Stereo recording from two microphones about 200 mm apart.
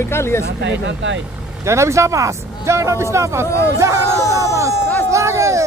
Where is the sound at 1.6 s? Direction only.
15° right (ahead or behind).